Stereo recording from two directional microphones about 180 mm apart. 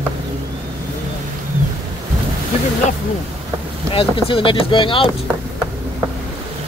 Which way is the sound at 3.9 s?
30° left (ahead or behind).